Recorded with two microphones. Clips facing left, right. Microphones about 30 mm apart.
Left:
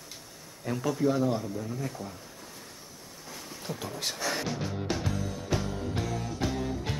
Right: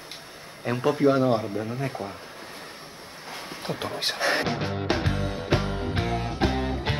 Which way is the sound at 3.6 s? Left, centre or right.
Right.